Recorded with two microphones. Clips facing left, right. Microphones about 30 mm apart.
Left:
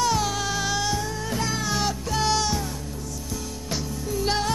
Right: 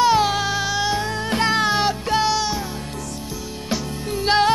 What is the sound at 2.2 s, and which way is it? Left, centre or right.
Music, centre.